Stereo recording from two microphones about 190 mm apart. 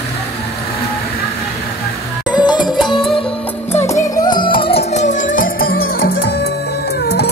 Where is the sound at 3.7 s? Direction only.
10° left (ahead or behind).